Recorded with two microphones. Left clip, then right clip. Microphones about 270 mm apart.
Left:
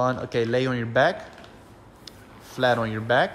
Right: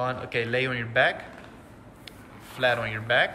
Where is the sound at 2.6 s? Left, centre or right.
Centre.